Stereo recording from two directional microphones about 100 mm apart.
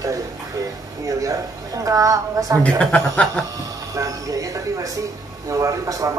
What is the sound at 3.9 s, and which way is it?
Speech, 35° right (ahead or behind).